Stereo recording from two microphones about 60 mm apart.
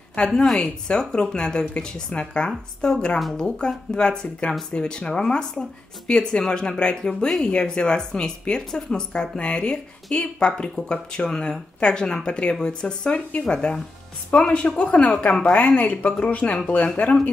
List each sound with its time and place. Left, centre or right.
0.4 s a woman's voice: centre